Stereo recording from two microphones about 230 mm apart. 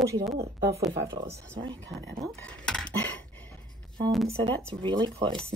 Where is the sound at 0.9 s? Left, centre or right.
Right.